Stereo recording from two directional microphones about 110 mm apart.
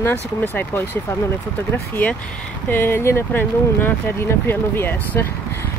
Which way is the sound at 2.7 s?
20° left (ahead or behind).